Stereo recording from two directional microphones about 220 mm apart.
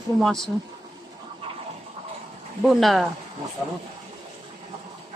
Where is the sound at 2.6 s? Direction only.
Centre (ahead or behind).